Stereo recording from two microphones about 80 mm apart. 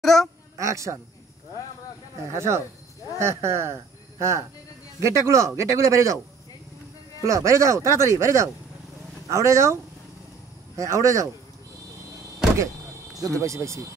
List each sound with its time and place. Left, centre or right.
0.0 s a woman's voice: centre
0.6 s speech: right
2.2 s speech: right
7.2 s speech: right
10.8 s speech: right
13.2 s speech: right